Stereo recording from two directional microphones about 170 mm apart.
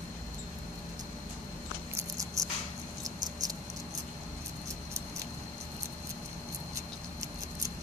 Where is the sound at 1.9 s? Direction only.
20° right (ahead or behind).